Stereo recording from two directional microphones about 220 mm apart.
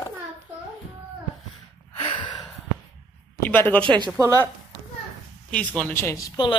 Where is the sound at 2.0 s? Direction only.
20° left (ahead or behind).